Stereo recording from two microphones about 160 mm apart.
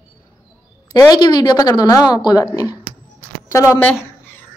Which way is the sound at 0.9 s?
25° left (ahead or behind).